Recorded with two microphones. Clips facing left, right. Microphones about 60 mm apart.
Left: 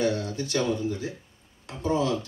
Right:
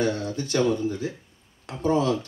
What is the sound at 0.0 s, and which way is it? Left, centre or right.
A man's voice, right.